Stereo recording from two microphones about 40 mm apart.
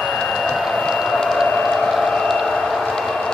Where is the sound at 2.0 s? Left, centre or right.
Centre.